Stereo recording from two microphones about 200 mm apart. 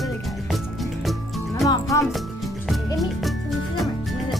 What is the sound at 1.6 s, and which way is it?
Music, 15° left (ahead or behind).